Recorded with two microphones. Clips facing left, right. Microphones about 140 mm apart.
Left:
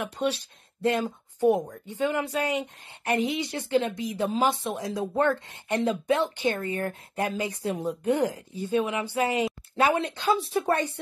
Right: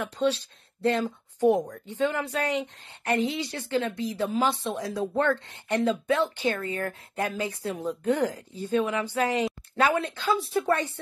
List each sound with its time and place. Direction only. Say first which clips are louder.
0.0 s a woman's voice: right 2 dB; 15° left (ahead or behind)